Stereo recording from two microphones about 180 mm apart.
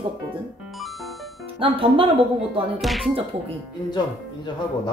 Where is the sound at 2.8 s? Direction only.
Centre (ahead or behind).